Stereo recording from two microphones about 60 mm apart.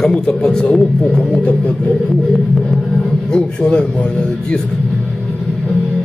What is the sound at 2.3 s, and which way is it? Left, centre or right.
Music, centre.